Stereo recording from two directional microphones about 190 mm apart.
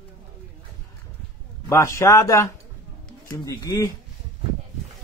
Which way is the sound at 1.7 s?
15° left (ahead or behind).